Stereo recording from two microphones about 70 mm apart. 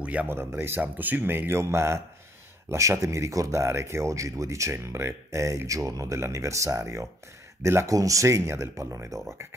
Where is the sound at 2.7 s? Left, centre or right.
Right.